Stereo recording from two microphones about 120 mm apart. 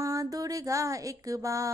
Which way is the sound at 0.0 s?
30° right (ahead or behind).